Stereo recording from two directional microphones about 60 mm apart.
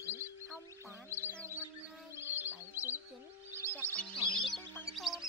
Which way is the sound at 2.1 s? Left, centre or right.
Right.